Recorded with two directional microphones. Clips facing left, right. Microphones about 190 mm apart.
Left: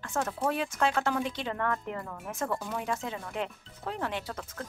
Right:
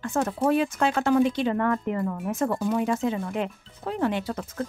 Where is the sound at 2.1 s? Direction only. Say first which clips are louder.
Right 7 dB; 25° right (ahead or behind).